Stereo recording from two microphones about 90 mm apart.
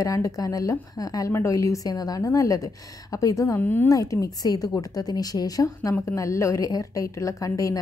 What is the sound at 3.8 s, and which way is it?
A woman's voice, 35° left (ahead or behind).